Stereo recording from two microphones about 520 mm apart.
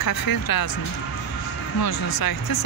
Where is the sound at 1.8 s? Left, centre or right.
Left.